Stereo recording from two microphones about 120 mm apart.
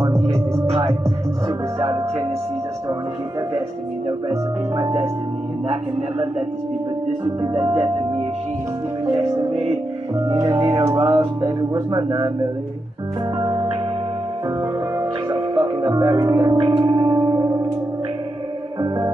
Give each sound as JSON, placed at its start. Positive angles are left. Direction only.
{"t": 1.8, "sound": "music", "side_deg": -50}
{"t": 4.7, "sound": "speech", "side_deg": -30}
{"t": 9.0, "sound": "music", "side_deg": -50}
{"t": 10.1, "sound": "music", "side_deg": -30}
{"t": 10.6, "sound": "music", "side_deg": -50}
{"t": 11.4, "sound": "speech", "side_deg": -45}
{"t": 13.4, "sound": "music", "side_deg": -45}